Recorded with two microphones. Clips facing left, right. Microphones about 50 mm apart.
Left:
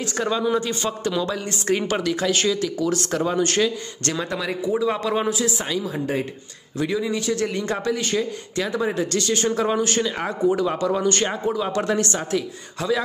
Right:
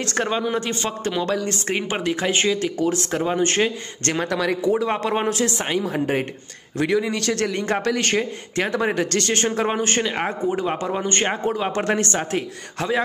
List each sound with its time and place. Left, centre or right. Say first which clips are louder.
0.0 s a man's voice: right 1 dB; right
0.6 s speech: even; right
1.3 s a man's voice: right 4 dB; right
1.9 s speech: even; right
4.3 s speech: right 4 dB; right
4.6 s speech: left 1 dB; right
5.3 s speech: right 2 dB; right
6.8 s a man's voice: right 2 dB; right
9.6 s speech: even; right
11.4 s speech: right 1 dB; right